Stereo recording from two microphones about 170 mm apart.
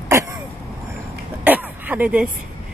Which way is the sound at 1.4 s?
10° right (ahead or behind).